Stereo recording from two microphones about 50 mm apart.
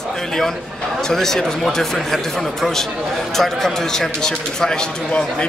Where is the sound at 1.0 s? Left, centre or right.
Centre.